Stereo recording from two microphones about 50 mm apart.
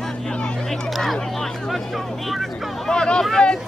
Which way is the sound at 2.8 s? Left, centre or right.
Centre.